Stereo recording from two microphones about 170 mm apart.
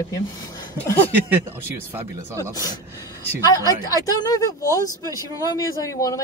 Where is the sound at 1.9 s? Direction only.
15° right (ahead or behind).